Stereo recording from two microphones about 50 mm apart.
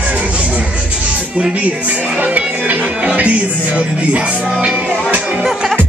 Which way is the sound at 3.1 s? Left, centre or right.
Right.